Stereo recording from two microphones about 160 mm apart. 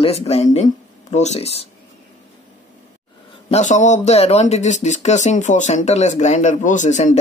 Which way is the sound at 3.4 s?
45° left (ahead or behind).